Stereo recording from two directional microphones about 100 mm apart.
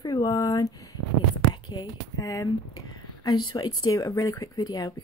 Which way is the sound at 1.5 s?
45° left (ahead or behind).